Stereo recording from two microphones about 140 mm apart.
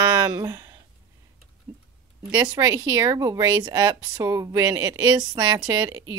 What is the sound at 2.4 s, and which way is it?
Speech, 25° right (ahead or behind).